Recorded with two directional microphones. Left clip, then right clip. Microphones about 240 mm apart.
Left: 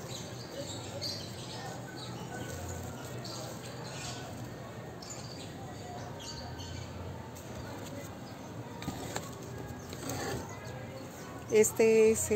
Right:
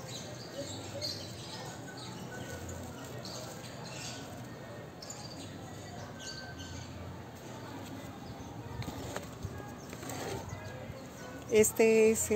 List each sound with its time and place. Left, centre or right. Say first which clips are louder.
11.5 s speech: left 1 dB; right